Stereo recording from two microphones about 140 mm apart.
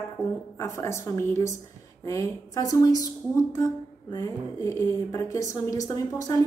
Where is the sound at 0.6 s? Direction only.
20° left (ahead or behind).